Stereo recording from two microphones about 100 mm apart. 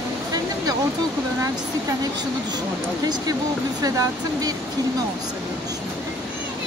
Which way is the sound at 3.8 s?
40° right (ahead or behind).